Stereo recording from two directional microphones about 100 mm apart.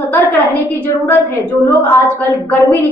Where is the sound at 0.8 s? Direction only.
15° left (ahead or behind).